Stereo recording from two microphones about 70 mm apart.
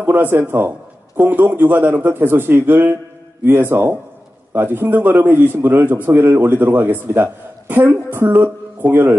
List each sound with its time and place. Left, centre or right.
0.0 s a man's voice: right